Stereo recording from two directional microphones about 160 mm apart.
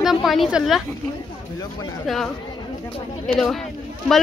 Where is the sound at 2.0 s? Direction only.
Centre (ahead or behind).